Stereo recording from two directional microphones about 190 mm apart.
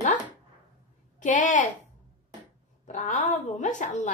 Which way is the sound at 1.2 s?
40° left (ahead or behind).